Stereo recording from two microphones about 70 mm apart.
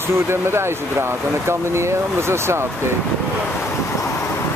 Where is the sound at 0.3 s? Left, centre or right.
Right.